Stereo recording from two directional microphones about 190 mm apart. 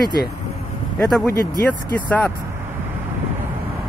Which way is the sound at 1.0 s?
Centre (ahead or behind).